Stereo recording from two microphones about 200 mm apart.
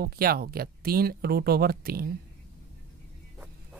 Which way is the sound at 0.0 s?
50° right (ahead or behind).